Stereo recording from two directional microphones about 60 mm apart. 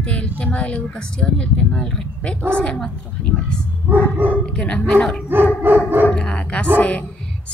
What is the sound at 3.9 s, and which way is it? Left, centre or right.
Dog, right.